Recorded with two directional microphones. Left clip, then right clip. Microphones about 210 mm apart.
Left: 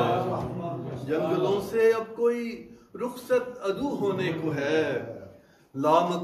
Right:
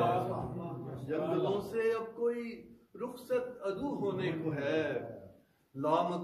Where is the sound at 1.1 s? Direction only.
15° left (ahead or behind).